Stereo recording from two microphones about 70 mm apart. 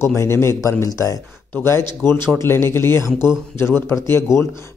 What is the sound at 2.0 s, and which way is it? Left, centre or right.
Speech, left.